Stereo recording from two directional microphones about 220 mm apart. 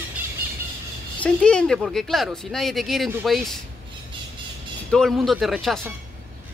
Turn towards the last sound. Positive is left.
turn(degrees=0)  # may be behind; listen again after turning